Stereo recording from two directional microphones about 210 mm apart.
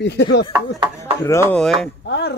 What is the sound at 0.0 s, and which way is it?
Speech, 55° left (ahead or behind).